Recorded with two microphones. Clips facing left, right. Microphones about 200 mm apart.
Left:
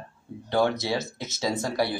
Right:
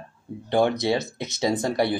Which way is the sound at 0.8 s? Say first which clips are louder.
Right 5 dB; 20° right (ahead or behind).